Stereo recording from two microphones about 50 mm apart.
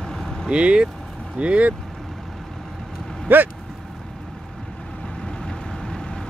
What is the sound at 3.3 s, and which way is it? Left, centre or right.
Vehicle, right.